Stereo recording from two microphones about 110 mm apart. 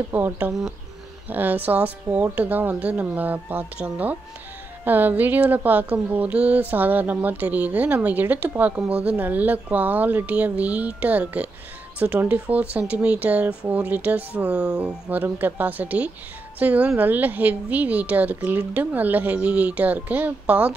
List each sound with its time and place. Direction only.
0.1 s speech: 20° right (ahead or behind)
0.5 s speech: 5° right (ahead or behind)
1.3 s speech: 15° right (ahead or behind)